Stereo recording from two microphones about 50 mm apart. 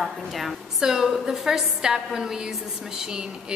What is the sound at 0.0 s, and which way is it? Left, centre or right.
A woman's voice, centre.